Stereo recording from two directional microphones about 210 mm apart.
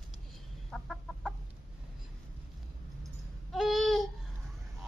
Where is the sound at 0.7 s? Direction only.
Centre (ahead or behind).